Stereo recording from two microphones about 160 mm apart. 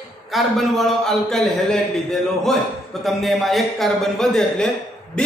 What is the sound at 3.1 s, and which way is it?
A man's voice, centre (ahead or behind).